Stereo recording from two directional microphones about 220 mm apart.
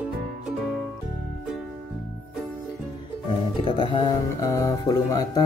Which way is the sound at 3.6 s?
20° left (ahead or behind).